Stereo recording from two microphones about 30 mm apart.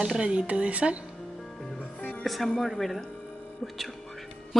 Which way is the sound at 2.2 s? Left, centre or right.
Centre.